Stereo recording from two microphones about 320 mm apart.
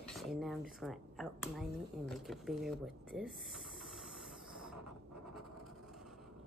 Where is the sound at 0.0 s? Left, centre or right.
Centre.